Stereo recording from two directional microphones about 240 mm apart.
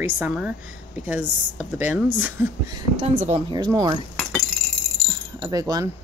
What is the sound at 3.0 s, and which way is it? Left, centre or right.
Speech, right.